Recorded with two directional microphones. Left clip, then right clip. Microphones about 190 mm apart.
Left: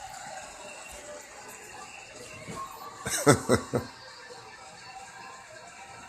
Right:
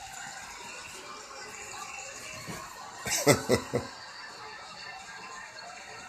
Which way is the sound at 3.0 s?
30° left (ahead or behind).